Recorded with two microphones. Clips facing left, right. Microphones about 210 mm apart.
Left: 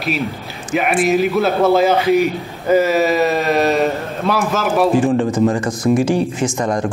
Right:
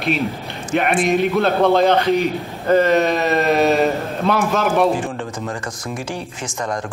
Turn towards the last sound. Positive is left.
turn(degrees=10)  # may be behind; listen again after turning